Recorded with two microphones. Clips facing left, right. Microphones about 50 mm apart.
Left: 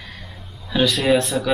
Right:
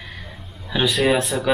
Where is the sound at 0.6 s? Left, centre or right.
Centre.